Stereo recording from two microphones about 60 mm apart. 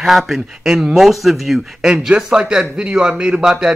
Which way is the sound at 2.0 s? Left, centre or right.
Centre.